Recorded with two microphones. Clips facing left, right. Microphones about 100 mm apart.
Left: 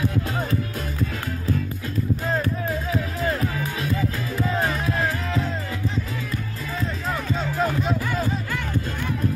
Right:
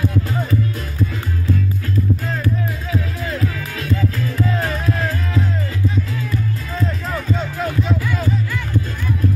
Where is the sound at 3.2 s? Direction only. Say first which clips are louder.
Even; 35° left (ahead or behind).